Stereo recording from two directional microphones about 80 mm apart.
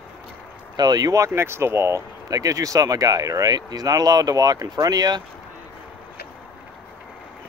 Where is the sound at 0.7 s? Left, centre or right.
Right.